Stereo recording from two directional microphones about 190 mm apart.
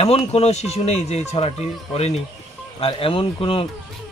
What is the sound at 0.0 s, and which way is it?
A man's voice, 35° left (ahead or behind).